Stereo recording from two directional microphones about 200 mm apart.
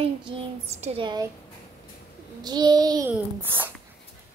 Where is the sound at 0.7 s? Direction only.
30° right (ahead or behind).